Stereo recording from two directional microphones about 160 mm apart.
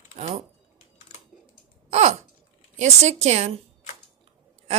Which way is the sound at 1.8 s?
45° right (ahead or behind).